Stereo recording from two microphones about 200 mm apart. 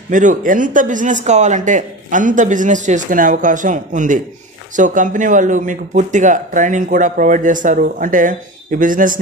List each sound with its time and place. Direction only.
0.1 s speech: 40° right (ahead or behind)